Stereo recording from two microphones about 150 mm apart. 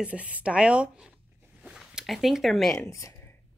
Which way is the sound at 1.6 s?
5° right (ahead or behind).